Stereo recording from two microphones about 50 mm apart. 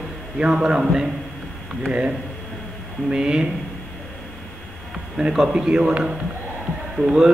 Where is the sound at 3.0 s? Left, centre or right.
Centre.